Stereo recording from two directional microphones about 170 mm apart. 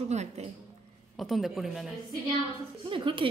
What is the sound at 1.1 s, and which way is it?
Speech, centre (ahead or behind).